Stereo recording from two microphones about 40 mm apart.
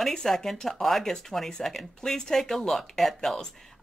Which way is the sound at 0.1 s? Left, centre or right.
Centre.